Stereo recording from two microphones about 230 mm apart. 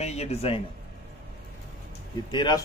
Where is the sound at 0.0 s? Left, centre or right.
Left.